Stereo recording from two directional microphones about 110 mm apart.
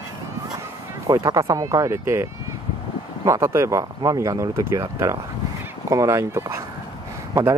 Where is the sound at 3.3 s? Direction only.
25° right (ahead or behind).